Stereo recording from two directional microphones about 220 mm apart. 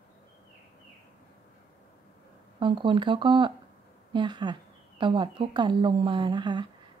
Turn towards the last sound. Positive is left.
turn(degrees=-20)  # may be behind; listen again after turning